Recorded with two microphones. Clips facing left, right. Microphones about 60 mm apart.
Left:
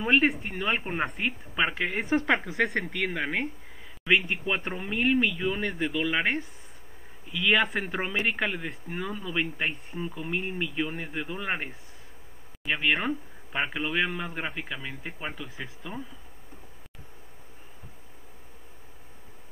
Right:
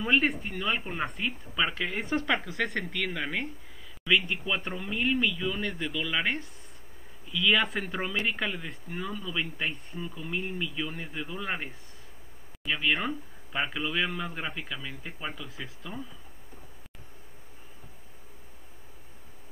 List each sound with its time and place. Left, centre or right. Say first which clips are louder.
0.5 s speech: left 2 dB; left
1.9 s speech: left 3 dB; centre
7.4 s speech: left 2 dB; centre
7.8 s speech: left 2 dB; left
15.4 s speech: left 2 dB; centre